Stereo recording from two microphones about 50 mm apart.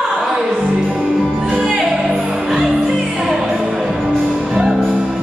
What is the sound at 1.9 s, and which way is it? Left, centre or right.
Music, centre.